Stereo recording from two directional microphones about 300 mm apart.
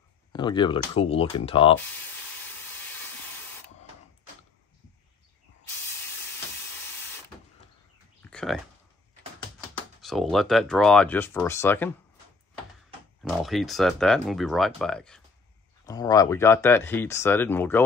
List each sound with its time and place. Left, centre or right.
0.3 s speech: centre
8.2 s a sound: centre
10.0 s speech: centre
13.2 s speech: centre